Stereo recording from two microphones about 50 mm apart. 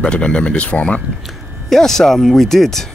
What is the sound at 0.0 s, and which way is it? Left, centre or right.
Speech, centre.